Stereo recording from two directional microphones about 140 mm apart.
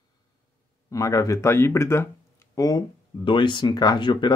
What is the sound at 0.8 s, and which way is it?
Speech, 20° left (ahead or behind).